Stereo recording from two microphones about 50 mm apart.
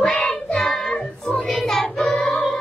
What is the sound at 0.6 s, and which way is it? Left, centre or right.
Child singing, centre.